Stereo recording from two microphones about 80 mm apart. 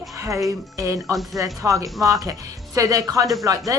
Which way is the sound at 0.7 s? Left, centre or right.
Right.